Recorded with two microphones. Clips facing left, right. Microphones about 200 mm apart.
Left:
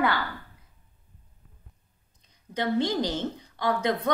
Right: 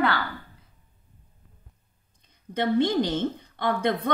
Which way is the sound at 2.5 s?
55° right (ahead or behind).